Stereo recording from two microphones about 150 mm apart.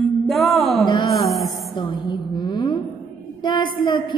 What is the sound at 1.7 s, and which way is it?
A woman's voice, 30° left (ahead or behind).